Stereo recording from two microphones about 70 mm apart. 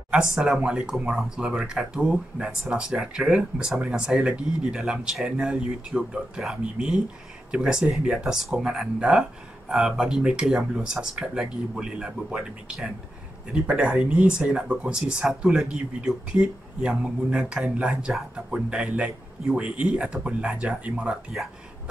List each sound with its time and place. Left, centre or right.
0.1 s speech: centre